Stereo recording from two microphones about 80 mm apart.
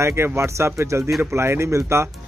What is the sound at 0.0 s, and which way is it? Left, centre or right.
Speech, right.